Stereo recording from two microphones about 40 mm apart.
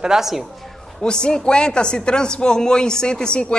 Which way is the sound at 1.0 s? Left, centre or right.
Centre.